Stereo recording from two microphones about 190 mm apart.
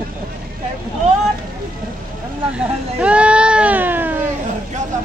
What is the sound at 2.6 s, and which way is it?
Speech, 5° right (ahead or behind).